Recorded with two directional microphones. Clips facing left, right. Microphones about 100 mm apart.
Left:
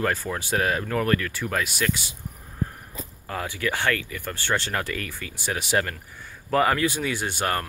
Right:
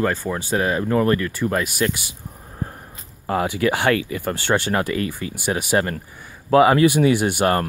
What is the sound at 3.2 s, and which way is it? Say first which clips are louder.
Speech: right 9 dB; 20° right (ahead or behind).